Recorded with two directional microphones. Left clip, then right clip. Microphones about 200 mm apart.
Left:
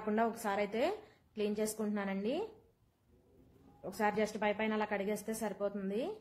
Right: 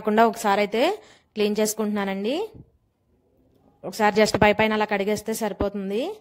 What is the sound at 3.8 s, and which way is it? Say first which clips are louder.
A woman's voice: right 14 dB; 45° right (ahead or behind).